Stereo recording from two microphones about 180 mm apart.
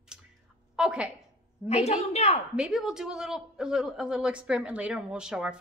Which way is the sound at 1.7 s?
35° left (ahead or behind).